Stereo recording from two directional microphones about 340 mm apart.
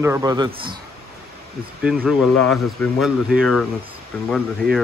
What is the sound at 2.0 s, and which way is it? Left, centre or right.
Speech, centre.